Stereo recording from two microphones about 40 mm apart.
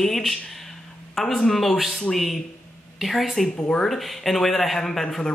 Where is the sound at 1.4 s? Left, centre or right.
Centre.